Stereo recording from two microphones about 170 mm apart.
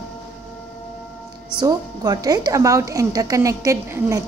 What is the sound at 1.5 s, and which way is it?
A woman's voice, 25° right (ahead or behind).